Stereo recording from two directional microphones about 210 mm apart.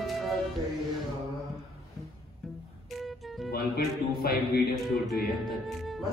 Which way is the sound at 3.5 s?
45° left (ahead or behind).